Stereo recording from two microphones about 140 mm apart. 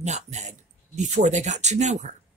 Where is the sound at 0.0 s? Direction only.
55° right (ahead or behind).